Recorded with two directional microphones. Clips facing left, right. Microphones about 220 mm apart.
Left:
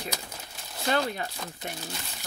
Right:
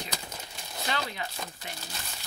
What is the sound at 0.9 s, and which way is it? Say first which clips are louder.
Speech: left 7 dB; 45° left (ahead or behind).